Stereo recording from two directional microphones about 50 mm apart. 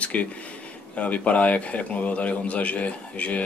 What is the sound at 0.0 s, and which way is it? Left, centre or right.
A man's voice, left.